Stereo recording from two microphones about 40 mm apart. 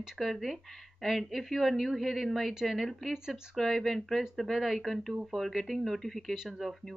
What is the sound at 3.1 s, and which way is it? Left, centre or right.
Speech, centre.